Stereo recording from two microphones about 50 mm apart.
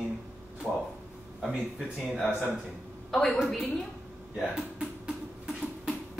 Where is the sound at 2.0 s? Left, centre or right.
Centre.